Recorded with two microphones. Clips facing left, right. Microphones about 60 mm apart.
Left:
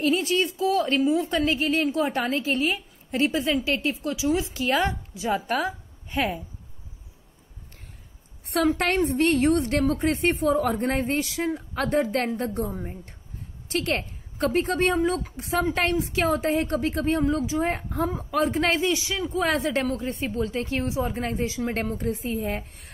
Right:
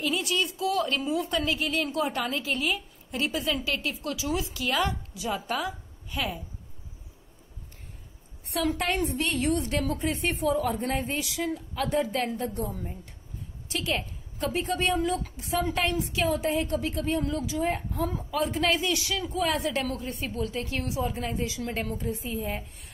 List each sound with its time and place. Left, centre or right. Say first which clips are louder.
0.0 s a woman's voice: left 5 dB; left
4.0 s a woman's voice: left 5 dB; left
5.7 s a sound: left 3 dB; left
8.7 s a woman's voice: left 5 dB; left
11.2 s a woman's voice: left 3 dB; left
11.7 s a woman's voice: left 4 dB; left
18.5 s a woman's voice: left 3 dB; left
21.9 s a woman's voice: left 4 dB; left